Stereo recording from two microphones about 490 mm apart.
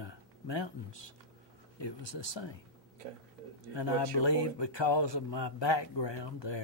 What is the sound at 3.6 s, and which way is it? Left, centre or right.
Speech, left.